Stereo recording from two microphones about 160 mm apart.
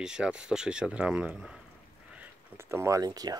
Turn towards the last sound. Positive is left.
turn(degrees=-25)  # may be behind; listen again after turning